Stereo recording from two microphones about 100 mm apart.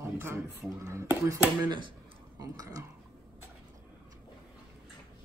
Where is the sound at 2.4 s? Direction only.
40° right (ahead or behind).